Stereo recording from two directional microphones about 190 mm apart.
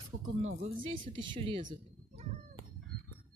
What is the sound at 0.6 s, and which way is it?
Speech, 30° right (ahead or behind).